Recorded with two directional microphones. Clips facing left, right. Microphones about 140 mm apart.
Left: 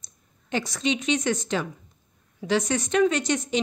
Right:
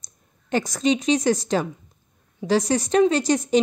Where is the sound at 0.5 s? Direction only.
45° right (ahead or behind).